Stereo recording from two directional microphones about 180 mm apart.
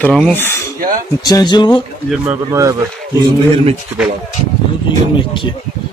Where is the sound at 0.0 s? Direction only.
5° left (ahead or behind).